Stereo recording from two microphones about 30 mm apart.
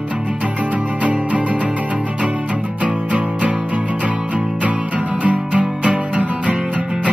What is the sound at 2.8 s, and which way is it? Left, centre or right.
Music, right.